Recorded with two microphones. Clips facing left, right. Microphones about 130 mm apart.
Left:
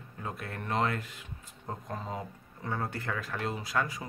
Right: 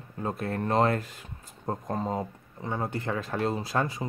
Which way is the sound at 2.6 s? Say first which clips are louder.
Right 4 dB; 20° right (ahead or behind).